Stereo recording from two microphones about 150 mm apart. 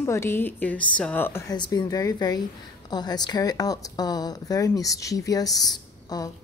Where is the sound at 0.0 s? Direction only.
15° left (ahead or behind).